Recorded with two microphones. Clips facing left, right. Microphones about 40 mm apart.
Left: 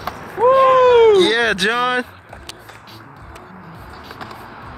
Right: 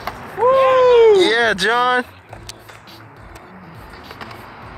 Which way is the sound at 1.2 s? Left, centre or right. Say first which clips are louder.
Even; centre.